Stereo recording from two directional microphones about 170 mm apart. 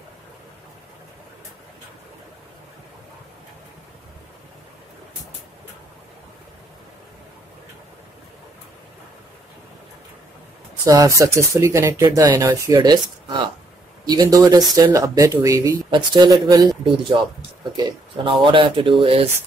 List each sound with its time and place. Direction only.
10.8 s speech: 20° right (ahead or behind)